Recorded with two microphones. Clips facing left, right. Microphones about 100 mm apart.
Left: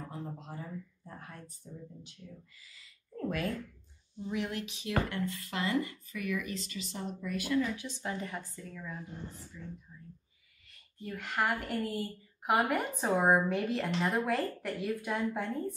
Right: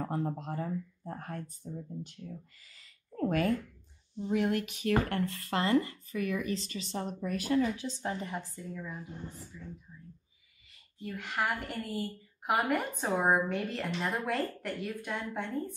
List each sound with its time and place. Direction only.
0.0 s speech: 60° right (ahead or behind)
3.2 s speech: 40° right (ahead or behind)
4.3 s speech: 50° right (ahead or behind); by 8.9 s 15° right (ahead or behind)
9.5 s a woman's voice: 5° right (ahead or behind)
11.0 s a woman's voice: centre (ahead or behind)